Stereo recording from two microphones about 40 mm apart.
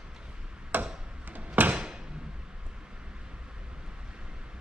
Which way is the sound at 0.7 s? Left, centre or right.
Right.